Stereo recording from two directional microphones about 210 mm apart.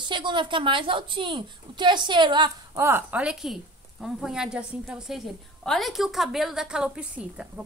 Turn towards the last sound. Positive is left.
turn(degrees=-5)  # may be behind; listen again after turning